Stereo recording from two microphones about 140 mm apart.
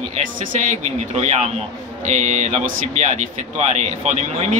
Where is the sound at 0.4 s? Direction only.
65° right (ahead or behind).